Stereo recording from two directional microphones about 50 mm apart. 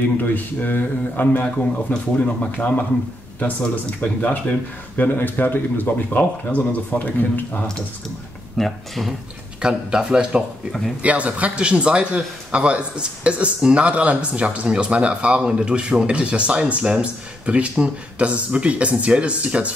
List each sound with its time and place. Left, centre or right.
0.2 s speech: left
4.0 s speech: left
8.5 s speech: centre
9.6 s speech: centre
11.0 s speech: right